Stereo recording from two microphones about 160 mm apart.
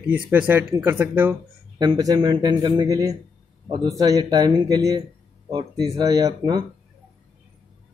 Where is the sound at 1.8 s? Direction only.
25° right (ahead or behind).